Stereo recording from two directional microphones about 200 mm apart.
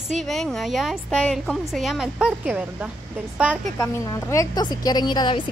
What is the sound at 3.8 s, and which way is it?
A woman's voice, 15° left (ahead or behind).